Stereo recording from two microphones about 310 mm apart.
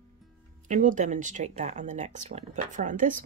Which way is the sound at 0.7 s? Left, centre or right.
Right.